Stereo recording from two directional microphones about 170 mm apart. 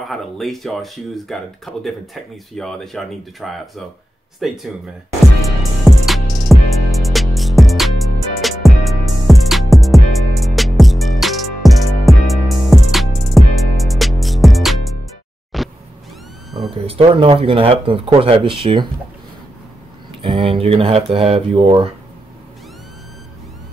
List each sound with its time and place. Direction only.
0.1 s speech: centre (ahead or behind)
5.6 s music: centre (ahead or behind)
15.5 s vehicle: centre (ahead or behind)
16.7 s speech: 35° right (ahead or behind)
20.2 s speech: 35° right (ahead or behind)